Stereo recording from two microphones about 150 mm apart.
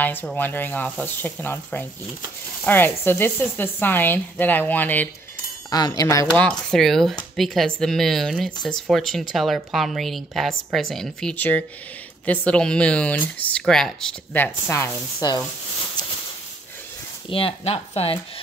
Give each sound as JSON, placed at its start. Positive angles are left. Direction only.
{"t": 0.0, "sound": "speech", "side_deg": 10}
{"t": 5.7, "sound": "speech", "side_deg": 25}
{"t": 6.3, "sound": "speech", "side_deg": 5}
{"t": 17.3, "sound": "speech", "side_deg": 40}